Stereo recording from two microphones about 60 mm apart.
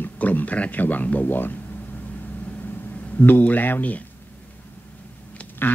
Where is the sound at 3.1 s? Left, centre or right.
Left.